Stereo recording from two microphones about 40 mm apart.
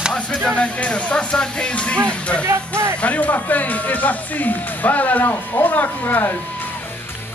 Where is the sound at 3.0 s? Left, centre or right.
Left.